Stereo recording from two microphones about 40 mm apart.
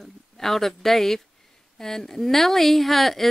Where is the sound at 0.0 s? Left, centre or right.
Centre.